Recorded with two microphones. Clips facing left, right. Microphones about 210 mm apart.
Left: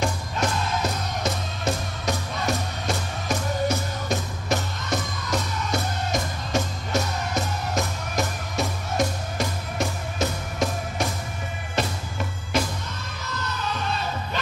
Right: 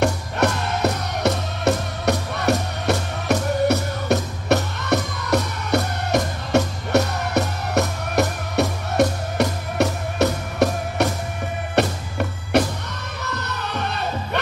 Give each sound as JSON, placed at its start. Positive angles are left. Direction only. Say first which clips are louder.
{"t": 0.0, "sound": "music", "louder": "right 6 dB", "side_deg": -65}